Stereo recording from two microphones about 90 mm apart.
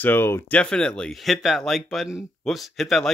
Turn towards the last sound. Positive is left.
turn(degrees=0)  # may be behind; listen again after turning